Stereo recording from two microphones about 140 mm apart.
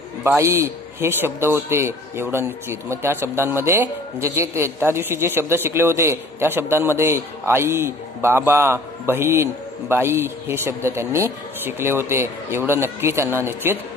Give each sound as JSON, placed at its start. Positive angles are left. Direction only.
{"t": 0.2, "sound": "a man's voice", "side_deg": -20}